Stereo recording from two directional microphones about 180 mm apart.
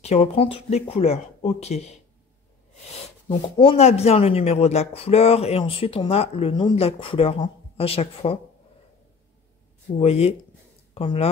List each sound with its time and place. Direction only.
0.0 s speech: 35° left (ahead or behind)
3.3 s speech: 30° left (ahead or behind)
9.9 s speech: 35° left (ahead or behind)